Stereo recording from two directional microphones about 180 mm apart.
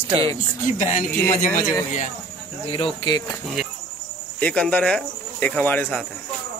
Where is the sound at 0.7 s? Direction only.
45° left (ahead or behind).